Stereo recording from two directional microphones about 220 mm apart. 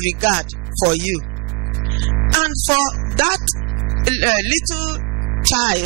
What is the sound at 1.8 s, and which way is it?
Music, 15° right (ahead or behind).